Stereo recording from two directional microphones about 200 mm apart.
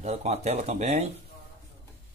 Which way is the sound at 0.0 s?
35° right (ahead or behind).